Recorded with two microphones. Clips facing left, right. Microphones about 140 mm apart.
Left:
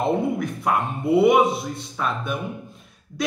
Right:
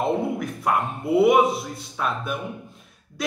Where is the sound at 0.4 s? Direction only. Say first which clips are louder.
Left 1 dB; centre (ahead or behind).